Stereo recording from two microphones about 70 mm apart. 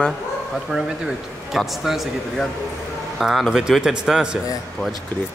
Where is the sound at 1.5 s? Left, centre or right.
Centre.